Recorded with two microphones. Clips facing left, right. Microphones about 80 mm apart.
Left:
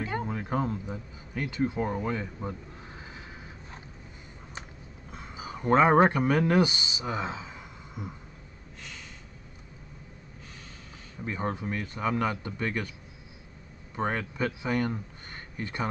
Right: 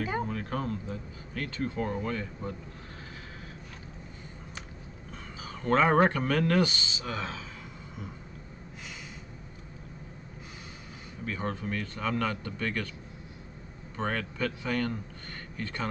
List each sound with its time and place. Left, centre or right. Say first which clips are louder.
0.3 s speech: left 3 dB; centre
5.1 s speech: left 3 dB; centre
11.2 s speech: left 2 dB; centre
13.9 s a man's voice: left 2 dB; centre